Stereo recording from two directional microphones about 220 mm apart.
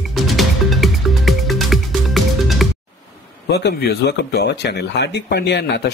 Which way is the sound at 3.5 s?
45° left (ahead or behind).